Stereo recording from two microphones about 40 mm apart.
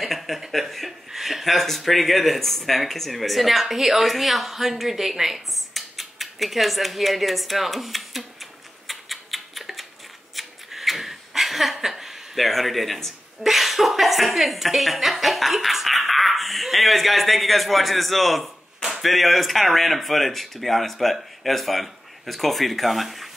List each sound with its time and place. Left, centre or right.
0.0 s speech: centre
10.3 s a sound: centre
13.4 s a woman's voice: centre